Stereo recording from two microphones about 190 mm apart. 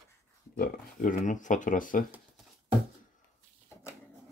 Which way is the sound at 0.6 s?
45° left (ahead or behind).